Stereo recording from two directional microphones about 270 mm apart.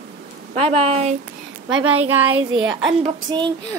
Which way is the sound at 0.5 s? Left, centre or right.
Right.